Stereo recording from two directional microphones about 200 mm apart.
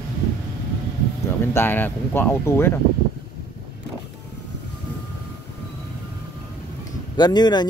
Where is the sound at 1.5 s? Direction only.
10° left (ahead or behind).